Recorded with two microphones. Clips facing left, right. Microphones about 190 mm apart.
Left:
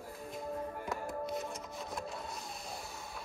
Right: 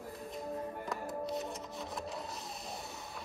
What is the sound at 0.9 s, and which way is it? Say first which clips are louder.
Music: even; centre (ahead or behind).